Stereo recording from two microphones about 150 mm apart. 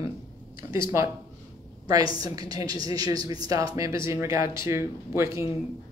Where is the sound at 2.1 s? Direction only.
25° right (ahead or behind).